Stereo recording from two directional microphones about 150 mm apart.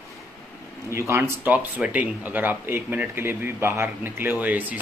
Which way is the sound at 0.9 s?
20° right (ahead or behind).